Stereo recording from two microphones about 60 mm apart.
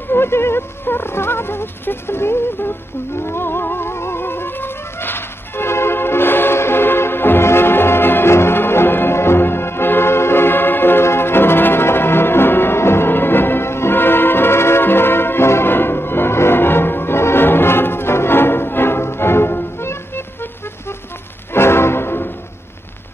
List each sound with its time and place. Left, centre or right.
0.1 s speech: left
3.2 s music: left
21.5 s music: left